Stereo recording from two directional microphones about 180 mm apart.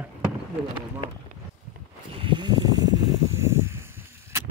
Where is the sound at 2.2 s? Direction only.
25° right (ahead or behind).